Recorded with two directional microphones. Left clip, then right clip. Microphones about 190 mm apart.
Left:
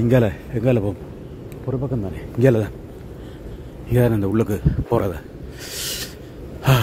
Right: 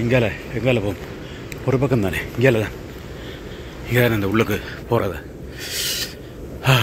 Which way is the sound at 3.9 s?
30° left (ahead or behind).